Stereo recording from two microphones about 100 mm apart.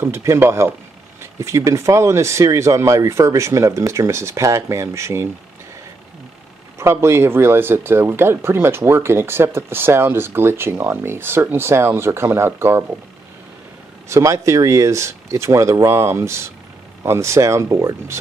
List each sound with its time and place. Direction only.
0.0 s speech: 30° right (ahead or behind)
6.8 s speech: 25° right (ahead or behind)
14.0 s speech: 30° right (ahead or behind)